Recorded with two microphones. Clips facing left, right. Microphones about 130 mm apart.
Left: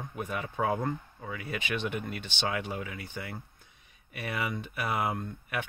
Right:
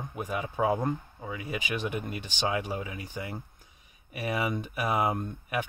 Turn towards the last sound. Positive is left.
turn(degrees=-15)  # may be behind; listen again after turning